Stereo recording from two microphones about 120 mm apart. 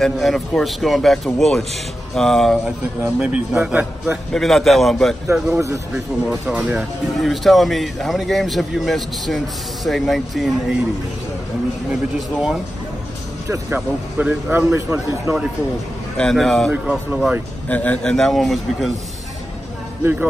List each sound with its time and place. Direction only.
0.0 s a man's voice: centre (ahead or behind)
3.0 s a man's voice: 10° right (ahead or behind)
5.3 s a man's voice: 25° right (ahead or behind)
6.4 s a man's voice: 15° right (ahead or behind)
7.2 s a man's voice: centre (ahead or behind)
11.9 s a man's voice: 5° right (ahead or behind)
13.7 s a man's voice: 10° right (ahead or behind)
14.7 s a man's voice: 25° right (ahead or behind)
16.2 s a man's voice: 5° left (ahead or behind)
16.7 s a man's voice: 5° right (ahead or behind)
17.6 s a man's voice: 10° left (ahead or behind)
20.0 s a man's voice: 15° right (ahead or behind)